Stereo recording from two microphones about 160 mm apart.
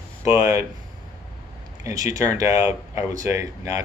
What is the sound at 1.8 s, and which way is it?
Speech, 20° right (ahead or behind).